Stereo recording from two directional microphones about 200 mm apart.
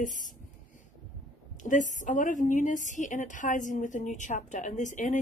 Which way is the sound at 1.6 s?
40° left (ahead or behind).